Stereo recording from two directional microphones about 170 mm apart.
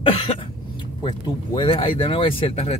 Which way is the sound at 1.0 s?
30° left (ahead or behind).